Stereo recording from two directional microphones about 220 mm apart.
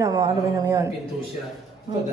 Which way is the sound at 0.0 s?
15° right (ahead or behind).